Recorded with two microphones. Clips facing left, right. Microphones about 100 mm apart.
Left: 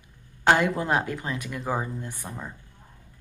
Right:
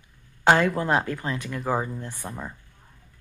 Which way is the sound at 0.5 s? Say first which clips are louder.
Right 2 dB; 20° left (ahead or behind).